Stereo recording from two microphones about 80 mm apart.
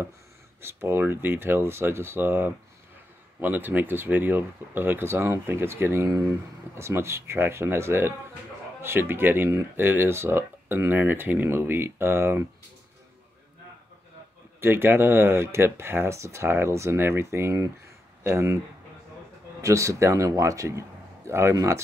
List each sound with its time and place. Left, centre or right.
0.6 s speech: right
14.6 s speech: right
19.6 s speech: right